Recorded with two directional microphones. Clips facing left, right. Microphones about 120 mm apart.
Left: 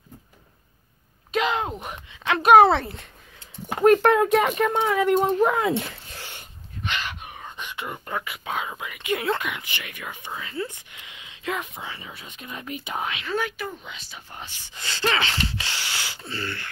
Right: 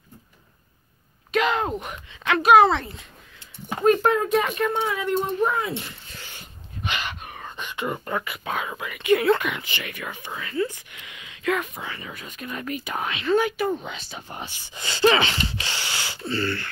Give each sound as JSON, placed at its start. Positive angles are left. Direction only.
{"t": 1.3, "sound": "a sound", "side_deg": 30}
{"t": 1.8, "sound": "speech", "side_deg": 25}
{"t": 2.4, "sound": "speech", "side_deg": 55}
{"t": 4.6, "sound": "speech", "side_deg": 45}
{"t": 5.2, "sound": "speech", "side_deg": 90}
{"t": 6.1, "sound": "a sound", "side_deg": 75}
{"t": 6.8, "sound": "dog", "side_deg": -10}
{"t": 7.1, "sound": "speech", "side_deg": 10}
{"t": 11.0, "sound": "a sound", "side_deg": 25}
{"t": 11.8, "sound": "speech", "side_deg": 15}
{"t": 13.4, "sound": "speech", "side_deg": -5}
{"t": 13.8, "sound": "speech", "side_deg": -35}
{"t": 14.4, "sound": "speech", "side_deg": -5}
{"t": 15.6, "sound": "a sound", "side_deg": 0}